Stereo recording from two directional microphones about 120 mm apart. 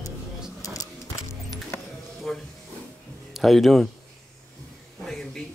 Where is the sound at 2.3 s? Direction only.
5° left (ahead or behind).